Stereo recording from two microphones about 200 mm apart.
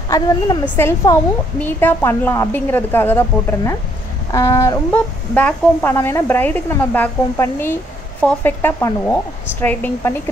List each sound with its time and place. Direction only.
0.1 s speech: 15° left (ahead or behind)